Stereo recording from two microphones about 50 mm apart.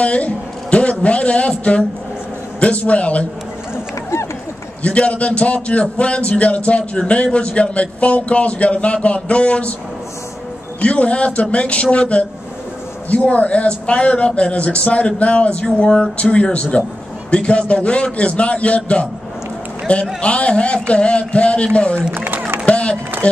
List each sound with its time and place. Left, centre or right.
0.0 s a man's voice: left
4.8 s a man's voice: left
10.8 s a man's voice: left
20.2 s a man's voice: left
22.1 s speech: right
22.7 s a sound: left